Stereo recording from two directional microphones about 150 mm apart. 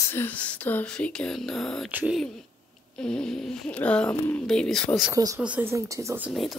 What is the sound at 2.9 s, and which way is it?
Speech, 5° left (ahead or behind).